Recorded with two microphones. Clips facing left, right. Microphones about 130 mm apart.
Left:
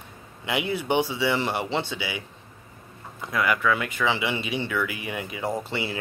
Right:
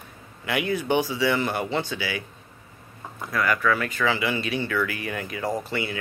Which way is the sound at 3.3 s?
15° left (ahead or behind).